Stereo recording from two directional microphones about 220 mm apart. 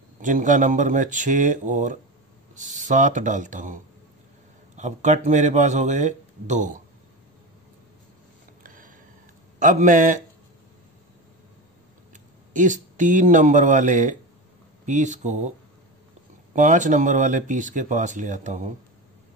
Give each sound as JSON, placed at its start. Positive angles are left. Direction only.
{"t": 0.2, "sound": "speech", "side_deg": -35}
{"t": 8.6, "sound": "a sound", "side_deg": -40}
{"t": 9.6, "sound": "speech", "side_deg": -35}
{"t": 12.1, "sound": "speech", "side_deg": -35}
{"t": 16.5, "sound": "speech", "side_deg": -35}